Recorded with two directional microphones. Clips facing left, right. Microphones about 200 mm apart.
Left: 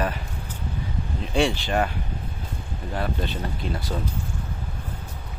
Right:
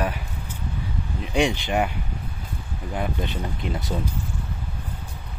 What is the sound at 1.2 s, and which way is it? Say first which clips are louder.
Speech: even; 15° right (ahead or behind).